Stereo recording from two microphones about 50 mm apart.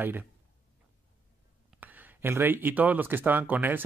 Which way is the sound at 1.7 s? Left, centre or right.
Right.